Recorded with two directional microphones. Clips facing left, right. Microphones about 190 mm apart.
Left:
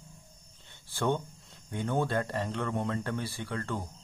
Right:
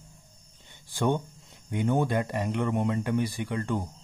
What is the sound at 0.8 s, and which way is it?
Speech, 15° right (ahead or behind).